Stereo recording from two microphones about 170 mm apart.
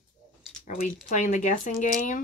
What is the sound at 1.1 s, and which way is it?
Speech, 45° left (ahead or behind).